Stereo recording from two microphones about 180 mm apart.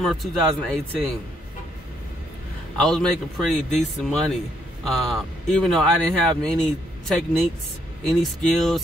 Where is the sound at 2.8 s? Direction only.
Centre (ahead or behind).